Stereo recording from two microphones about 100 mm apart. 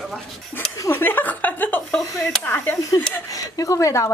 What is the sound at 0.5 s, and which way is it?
A woman's voice, 20° left (ahead or behind).